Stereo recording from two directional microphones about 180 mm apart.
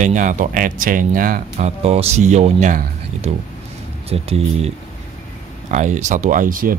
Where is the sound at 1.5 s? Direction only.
35° right (ahead or behind).